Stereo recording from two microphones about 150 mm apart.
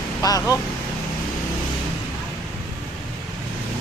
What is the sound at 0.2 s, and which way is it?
Speech, 25° left (ahead or behind).